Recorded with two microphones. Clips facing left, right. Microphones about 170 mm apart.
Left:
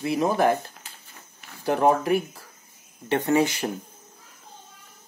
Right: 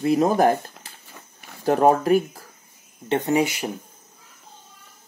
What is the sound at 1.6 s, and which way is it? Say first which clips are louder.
Speech: right 3 dB; 40° right (ahead or behind).